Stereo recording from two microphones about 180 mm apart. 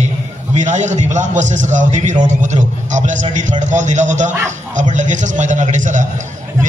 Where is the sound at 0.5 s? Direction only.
40° right (ahead or behind).